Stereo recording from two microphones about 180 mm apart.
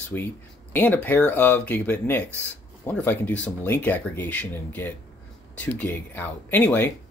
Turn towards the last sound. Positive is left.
turn(degrees=10)  # may be behind; listen again after turning